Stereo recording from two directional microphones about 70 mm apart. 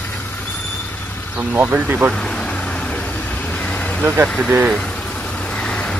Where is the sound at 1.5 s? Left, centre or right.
Right.